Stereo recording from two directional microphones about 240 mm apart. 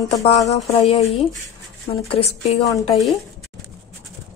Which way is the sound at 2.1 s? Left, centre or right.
Left.